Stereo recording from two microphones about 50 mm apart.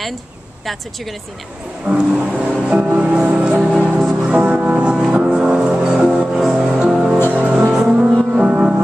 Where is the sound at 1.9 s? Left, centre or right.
Centre.